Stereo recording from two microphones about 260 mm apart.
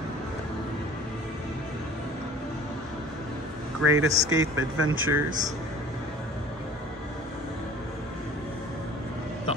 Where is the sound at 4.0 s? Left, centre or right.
Right.